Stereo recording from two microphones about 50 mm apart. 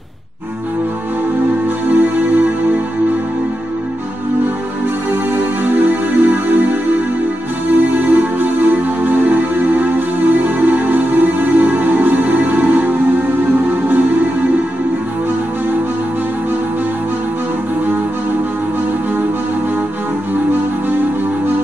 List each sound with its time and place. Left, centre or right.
1.9 s music: right
5.3 s music: right
7.9 s music: right